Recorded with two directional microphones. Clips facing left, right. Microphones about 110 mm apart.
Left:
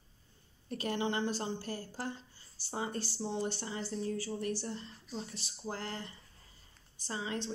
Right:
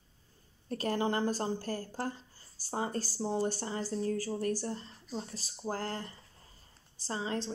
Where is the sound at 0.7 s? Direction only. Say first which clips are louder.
Right 3 dB; 40° right (ahead or behind).